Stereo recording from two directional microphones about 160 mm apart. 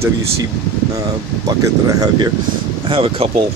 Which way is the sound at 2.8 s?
35° right (ahead or behind).